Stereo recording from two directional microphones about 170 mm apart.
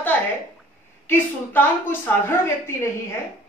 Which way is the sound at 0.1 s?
10° left (ahead or behind).